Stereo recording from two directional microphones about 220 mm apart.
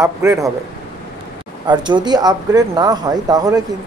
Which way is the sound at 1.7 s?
20° right (ahead or behind).